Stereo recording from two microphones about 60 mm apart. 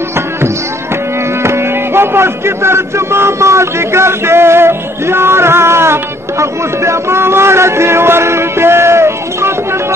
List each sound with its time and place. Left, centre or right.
1.4 s music: right